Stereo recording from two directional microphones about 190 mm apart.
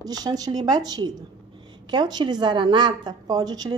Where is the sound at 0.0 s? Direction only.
20° right (ahead or behind).